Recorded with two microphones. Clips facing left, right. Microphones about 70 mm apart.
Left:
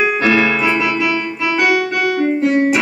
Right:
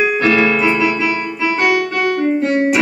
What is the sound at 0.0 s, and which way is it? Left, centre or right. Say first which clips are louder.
Keyboard: right 1 dB; centre.